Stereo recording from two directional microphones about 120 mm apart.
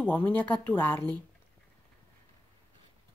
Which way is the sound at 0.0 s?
15° left (ahead or behind).